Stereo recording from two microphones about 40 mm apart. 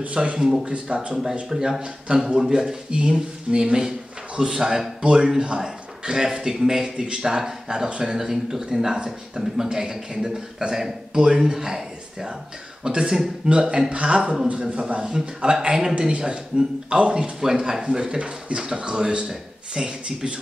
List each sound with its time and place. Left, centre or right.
0.0 s speech: right
1.5 s a man's voice: centre
5.0 s a man's voice: right
15.1 s a man's voice: centre